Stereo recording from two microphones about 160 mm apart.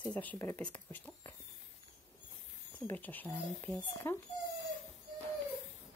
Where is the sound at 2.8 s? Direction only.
10° left (ahead or behind).